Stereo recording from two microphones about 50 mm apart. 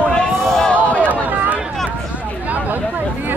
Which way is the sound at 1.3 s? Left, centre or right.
Right.